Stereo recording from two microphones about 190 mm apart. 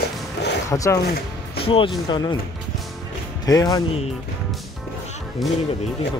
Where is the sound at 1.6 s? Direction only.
30° left (ahead or behind).